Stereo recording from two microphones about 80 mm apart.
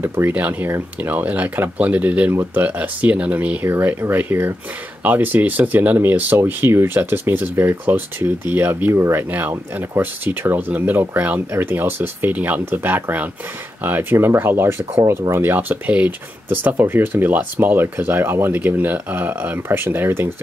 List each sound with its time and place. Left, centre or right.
0.0 s speech: right